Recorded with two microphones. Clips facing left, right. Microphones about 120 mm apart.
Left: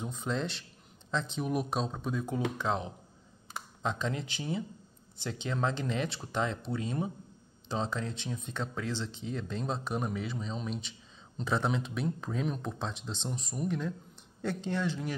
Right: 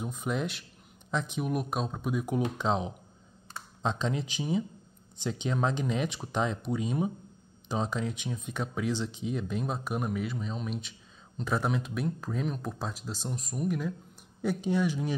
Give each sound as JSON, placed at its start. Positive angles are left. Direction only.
{"t": 0.0, "sound": "speech", "side_deg": -10}
{"t": 1.5, "sound": "speech", "side_deg": 0}